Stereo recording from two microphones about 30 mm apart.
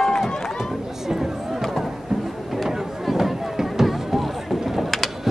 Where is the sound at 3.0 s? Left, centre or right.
Centre.